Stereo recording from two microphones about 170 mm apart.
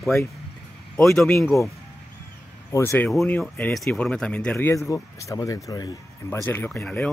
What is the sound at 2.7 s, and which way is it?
Speech, 15° left (ahead or behind).